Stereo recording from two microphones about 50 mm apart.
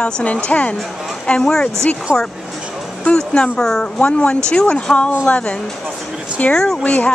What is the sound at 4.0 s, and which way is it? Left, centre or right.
Speech, left.